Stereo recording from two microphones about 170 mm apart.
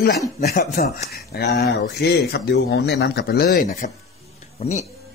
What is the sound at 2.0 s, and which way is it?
Speech, 75° left (ahead or behind).